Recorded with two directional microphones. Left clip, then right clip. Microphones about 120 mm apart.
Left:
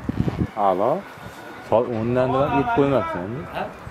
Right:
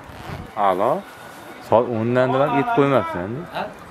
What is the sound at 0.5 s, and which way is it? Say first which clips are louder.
Speech: right 1 dB; 45° right (ahead or behind).